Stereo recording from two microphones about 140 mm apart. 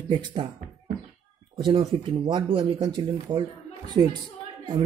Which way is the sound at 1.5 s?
35° right (ahead or behind).